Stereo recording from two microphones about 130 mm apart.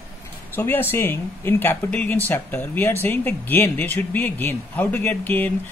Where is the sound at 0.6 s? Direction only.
15° left (ahead or behind).